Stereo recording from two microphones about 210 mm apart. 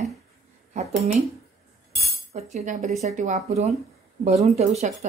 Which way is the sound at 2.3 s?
30° right (ahead or behind).